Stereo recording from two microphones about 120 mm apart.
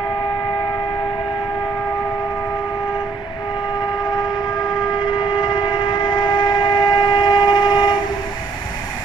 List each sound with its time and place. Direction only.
5.0 s train: 40° left (ahead or behind)